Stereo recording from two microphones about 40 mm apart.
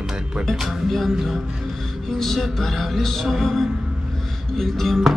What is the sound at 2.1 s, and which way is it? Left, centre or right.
Speech, centre.